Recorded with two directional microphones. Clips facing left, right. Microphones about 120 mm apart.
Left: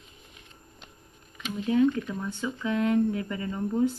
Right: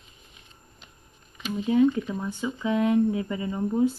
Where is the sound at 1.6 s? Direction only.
20° right (ahead or behind).